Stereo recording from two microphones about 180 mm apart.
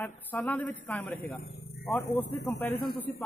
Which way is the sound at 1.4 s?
55° left (ahead or behind).